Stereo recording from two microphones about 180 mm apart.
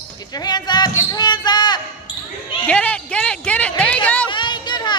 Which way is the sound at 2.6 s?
5° left (ahead or behind).